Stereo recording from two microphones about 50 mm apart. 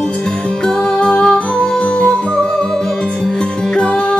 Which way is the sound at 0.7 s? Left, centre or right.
Centre.